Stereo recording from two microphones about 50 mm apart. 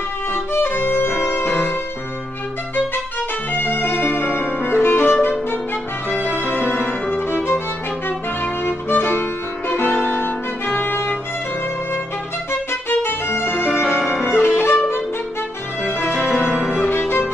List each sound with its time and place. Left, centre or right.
0.3 s music: left
3.5 s music: left
6.4 s music: left
8.6 s music: left
13.0 s music: left
13.9 s music: centre
14.3 s violin: left